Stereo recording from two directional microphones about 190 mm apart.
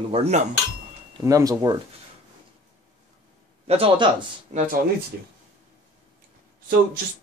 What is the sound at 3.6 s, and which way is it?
Speech, 30° right (ahead or behind).